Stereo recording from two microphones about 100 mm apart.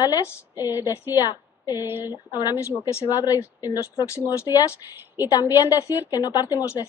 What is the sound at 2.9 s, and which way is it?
Speech, 30° left (ahead or behind).